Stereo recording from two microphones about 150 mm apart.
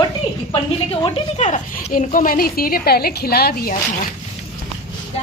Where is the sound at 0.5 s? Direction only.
35° left (ahead or behind).